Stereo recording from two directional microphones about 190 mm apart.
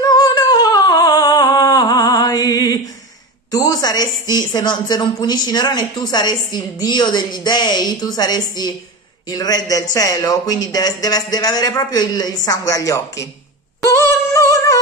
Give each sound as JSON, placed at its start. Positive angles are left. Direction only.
{"t": 0.0, "sound": "humming", "side_deg": 20}
{"t": 3.5, "sound": "a woman's voice", "side_deg": 20}
{"t": 13.8, "sound": "a sound", "side_deg": 15}